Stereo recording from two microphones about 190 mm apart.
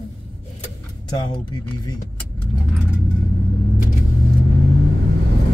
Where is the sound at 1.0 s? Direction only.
20° left (ahead or behind).